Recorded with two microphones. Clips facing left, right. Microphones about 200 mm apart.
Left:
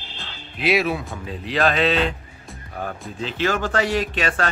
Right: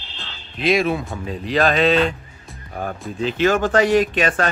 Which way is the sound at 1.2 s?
45° right (ahead or behind).